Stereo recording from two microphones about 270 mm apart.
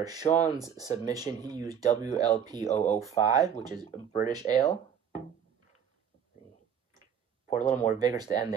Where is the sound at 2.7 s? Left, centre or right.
Left.